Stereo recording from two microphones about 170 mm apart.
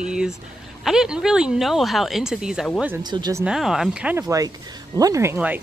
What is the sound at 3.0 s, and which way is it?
Speech, 25° right (ahead or behind).